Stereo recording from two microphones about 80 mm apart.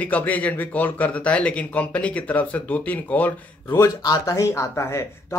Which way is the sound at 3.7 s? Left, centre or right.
Left.